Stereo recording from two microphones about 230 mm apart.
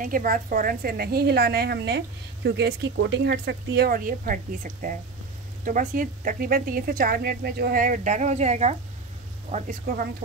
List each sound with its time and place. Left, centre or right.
0.0 s a woman's voice: right